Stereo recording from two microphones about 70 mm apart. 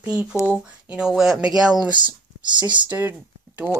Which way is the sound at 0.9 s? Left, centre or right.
Centre.